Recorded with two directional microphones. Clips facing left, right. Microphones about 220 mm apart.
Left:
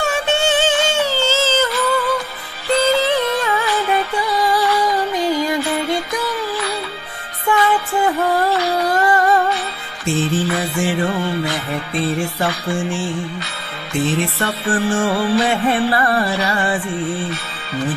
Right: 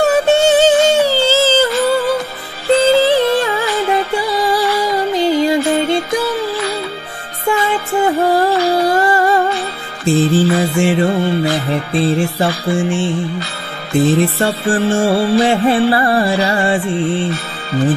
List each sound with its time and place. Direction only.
0.0 s music: 40° right (ahead or behind)